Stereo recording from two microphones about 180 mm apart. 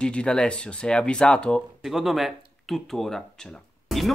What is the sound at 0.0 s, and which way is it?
Speech, 5° left (ahead or behind).